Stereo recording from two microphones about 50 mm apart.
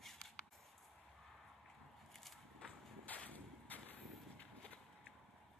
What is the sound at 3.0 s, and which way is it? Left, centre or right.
Vehicle, left.